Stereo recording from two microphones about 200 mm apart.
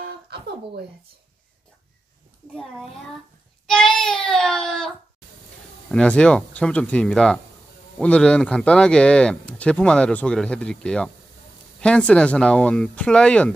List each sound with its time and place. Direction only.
3.6 s a child's voice: 5° left (ahead or behind)